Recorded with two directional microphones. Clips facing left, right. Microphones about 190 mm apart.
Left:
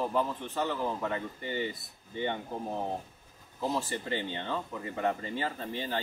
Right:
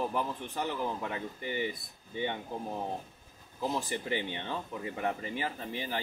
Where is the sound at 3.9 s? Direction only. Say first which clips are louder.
Even; 15° right (ahead or behind).